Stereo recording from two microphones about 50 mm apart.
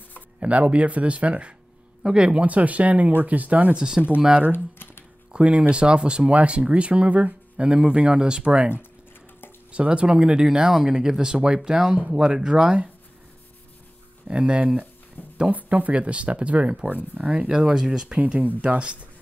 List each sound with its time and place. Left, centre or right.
0.4 s speech: right
5.3 s speech: right
14.2 s speech: right
15.2 s a sound: left
15.5 s speech: right
17.5 s speech: centre
18.2 s speech: right
18.6 s speech: right